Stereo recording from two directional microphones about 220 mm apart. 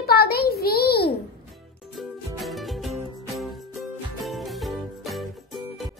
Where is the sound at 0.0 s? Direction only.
45° left (ahead or behind).